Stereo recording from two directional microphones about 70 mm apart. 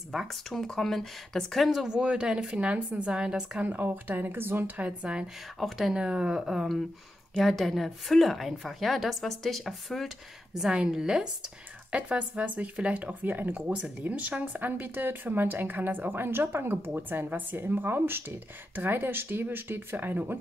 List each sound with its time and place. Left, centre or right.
0.1 s speech: centre
3.6 s speech: right
4.7 s speech: centre
5.6 s a woman's voice: centre
5.9 s a woman's voice: centre; by 20.3 s right